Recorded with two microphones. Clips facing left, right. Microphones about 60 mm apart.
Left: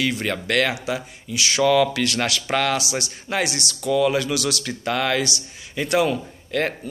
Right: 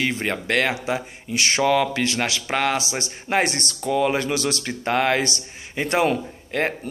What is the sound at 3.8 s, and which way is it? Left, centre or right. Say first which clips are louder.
Speech: left 1 dB; right.